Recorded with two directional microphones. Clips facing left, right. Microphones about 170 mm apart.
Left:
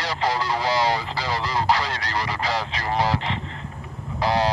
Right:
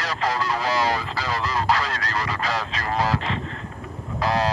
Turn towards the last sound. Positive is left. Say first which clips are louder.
# left 1 dB
turn(degrees=30)  # may be behind; listen again after turning